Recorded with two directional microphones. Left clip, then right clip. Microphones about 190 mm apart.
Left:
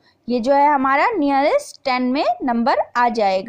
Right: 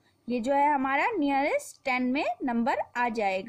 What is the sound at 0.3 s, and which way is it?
A woman's voice, 20° left (ahead or behind).